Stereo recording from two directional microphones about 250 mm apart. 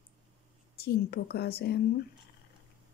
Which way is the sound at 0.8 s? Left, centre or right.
Left.